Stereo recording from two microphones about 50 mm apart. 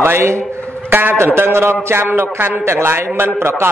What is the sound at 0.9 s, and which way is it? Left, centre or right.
A man's voice, right.